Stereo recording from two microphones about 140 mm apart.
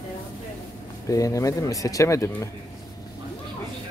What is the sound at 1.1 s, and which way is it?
Speech, 25° left (ahead or behind).